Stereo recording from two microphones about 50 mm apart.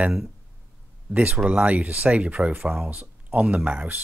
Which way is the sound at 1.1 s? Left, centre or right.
Right.